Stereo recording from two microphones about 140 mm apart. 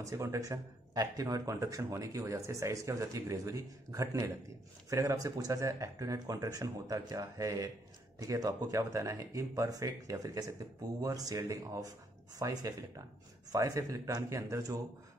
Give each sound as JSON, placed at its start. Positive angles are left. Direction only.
{"t": 0.0, "sound": "speech", "side_deg": -20}